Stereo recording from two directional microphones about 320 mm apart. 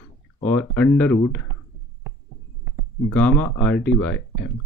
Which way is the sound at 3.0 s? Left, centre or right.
Centre.